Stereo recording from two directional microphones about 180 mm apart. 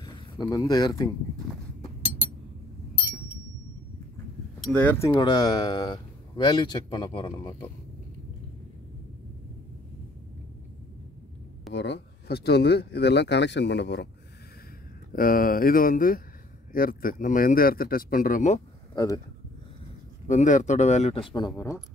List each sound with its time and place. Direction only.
0.0 s speech: 25° left (ahead or behind)
4.6 s speech: 10° left (ahead or behind)
5.1 s speech: 25° left (ahead or behind)
11.7 s speech: 75° left (ahead or behind)
15.1 s speech: 50° left (ahead or behind)
18.9 s speech: 20° left (ahead or behind)
20.2 s speech: 45° left (ahead or behind); by 21.7 s 20° left (ahead or behind)